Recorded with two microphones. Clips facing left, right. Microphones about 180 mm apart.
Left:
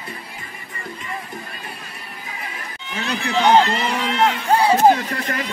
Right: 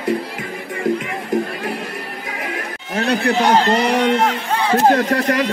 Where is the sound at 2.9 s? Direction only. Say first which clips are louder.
Right 8 dB; 40° right (ahead or behind).